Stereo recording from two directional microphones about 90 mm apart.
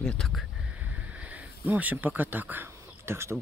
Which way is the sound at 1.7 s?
20° right (ahead or behind).